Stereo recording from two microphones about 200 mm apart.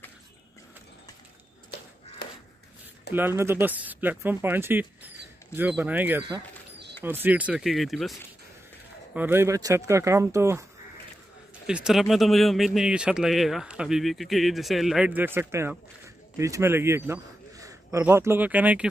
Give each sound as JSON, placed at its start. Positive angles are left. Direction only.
{"t": 2.2, "sound": "a sound", "side_deg": 50}
{"t": 3.2, "sound": "speech", "side_deg": -10}
{"t": 11.6, "sound": "a man's voice", "side_deg": -5}